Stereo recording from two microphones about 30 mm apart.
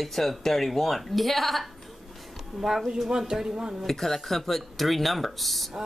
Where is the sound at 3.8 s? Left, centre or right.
Centre.